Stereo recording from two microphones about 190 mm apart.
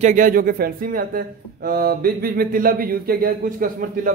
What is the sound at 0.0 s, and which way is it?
Speech, 45° right (ahead or behind).